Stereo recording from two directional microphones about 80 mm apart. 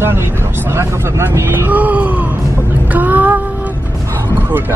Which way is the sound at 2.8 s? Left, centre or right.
Right.